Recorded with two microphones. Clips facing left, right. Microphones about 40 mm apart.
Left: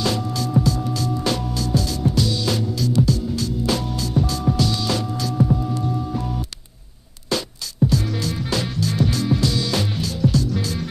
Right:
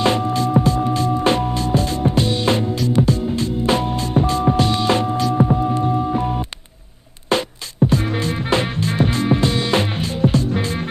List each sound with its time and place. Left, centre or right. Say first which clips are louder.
0.0 s music: right 6 dB; right